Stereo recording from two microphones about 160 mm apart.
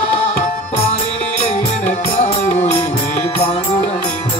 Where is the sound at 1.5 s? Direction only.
45° left (ahead or behind).